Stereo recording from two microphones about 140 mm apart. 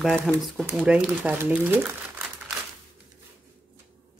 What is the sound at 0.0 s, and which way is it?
Speech, centre (ahead or behind).